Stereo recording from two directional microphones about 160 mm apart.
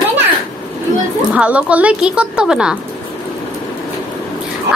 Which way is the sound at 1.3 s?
10° right (ahead or behind).